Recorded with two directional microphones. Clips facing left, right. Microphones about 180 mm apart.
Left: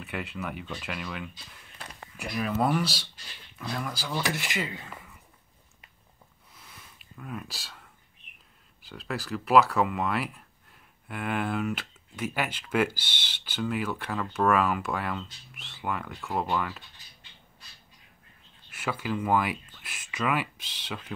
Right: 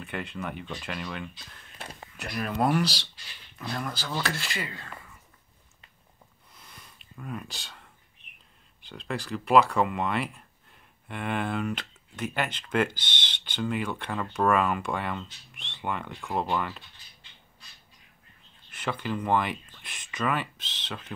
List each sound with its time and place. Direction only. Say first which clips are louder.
0.0 s speech: even; 5° left (ahead or behind)
1.8 s speech: right 2 dB; 30° right (ahead or behind)
2.1 s speech: left 1 dB; 5° left (ahead or behind); by 4.8 s 20° left (ahead or behind)
6.5 s a sound: even; 5° left (ahead or behind)
8.8 s speech: right 1 dB; 5° left (ahead or behind)
18.7 s speech: even; 10° left (ahead or behind)